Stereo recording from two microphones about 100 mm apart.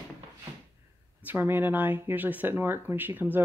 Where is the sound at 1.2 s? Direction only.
20° right (ahead or behind).